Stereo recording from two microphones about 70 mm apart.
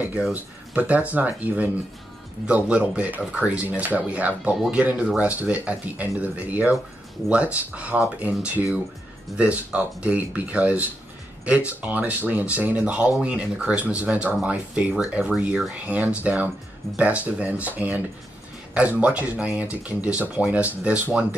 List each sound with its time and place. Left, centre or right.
0.3 s speech: right